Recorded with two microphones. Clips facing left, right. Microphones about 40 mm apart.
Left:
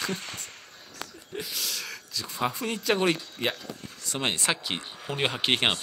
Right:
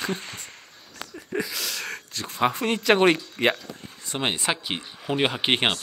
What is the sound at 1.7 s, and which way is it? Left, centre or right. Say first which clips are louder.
Speech: right 3 dB; right.